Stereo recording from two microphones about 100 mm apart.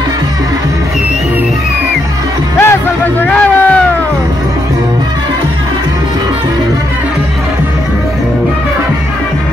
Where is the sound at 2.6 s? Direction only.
20° left (ahead or behind).